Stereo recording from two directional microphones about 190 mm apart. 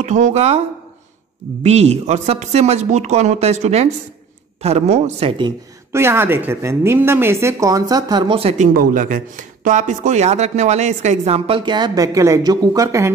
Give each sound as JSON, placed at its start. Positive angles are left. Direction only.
{"t": 0.0, "sound": "speech", "side_deg": -40}
{"t": 1.6, "sound": "speech", "side_deg": -35}
{"t": 5.4, "sound": "speech", "side_deg": -15}
{"t": 8.7, "sound": "speech", "side_deg": -45}